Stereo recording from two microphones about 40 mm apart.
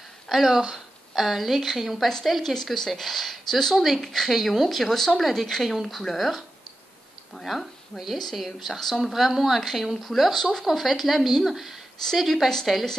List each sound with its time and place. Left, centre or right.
0.3 s a woman's voice: centre
2.5 s speech: centre
7.4 s speech: centre